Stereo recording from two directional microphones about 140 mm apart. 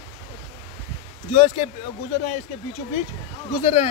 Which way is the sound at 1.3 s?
45° left (ahead or behind).